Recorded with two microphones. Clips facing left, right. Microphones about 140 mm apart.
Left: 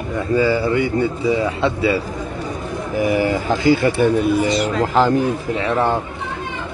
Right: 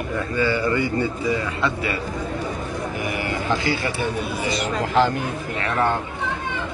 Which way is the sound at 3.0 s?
40° left (ahead or behind).